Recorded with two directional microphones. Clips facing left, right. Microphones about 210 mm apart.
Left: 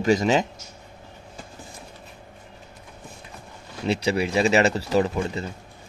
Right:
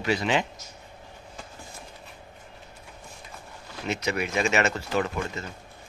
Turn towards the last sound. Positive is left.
turn(degrees=30)  # may be behind; listen again after turning